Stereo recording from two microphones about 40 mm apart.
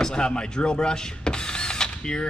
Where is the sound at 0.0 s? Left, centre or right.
Centre.